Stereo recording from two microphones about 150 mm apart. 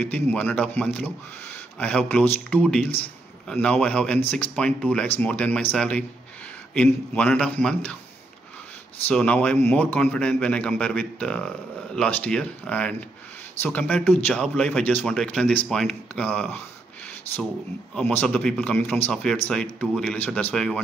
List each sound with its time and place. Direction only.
0.0 s a man's voice: 10° left (ahead or behind)
9.0 s a man's voice: 10° left (ahead or behind)
17.9 s a man's voice: 10° left (ahead or behind)